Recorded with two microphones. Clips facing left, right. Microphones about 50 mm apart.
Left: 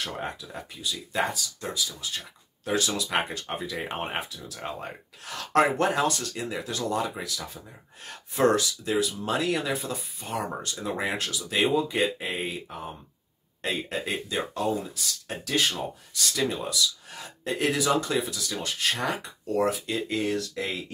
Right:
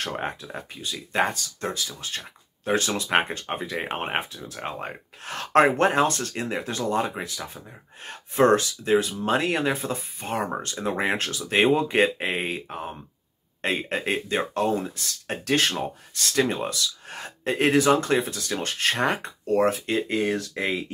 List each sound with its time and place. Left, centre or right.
0.0 s speech: right